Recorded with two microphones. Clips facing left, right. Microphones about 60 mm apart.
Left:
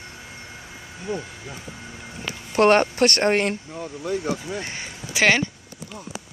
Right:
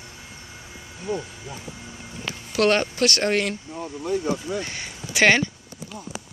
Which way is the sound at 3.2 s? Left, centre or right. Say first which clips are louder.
Left 2 dB; left.